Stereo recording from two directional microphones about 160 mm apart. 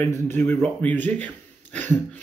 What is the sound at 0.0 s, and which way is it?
A man's voice, 15° left (ahead or behind).